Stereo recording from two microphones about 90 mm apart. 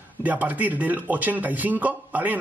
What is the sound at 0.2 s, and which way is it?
A man's voice, 20° right (ahead or behind).